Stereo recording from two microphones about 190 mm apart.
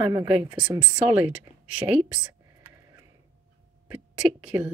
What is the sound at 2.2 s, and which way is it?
Whispering, 20° right (ahead or behind).